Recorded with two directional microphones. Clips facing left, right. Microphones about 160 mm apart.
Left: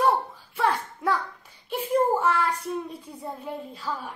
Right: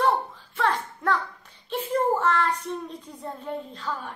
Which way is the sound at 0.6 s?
10° left (ahead or behind).